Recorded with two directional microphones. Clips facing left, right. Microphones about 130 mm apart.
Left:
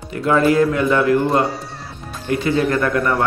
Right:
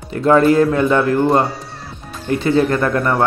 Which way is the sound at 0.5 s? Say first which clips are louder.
Right 2 dB; 30° right (ahead or behind).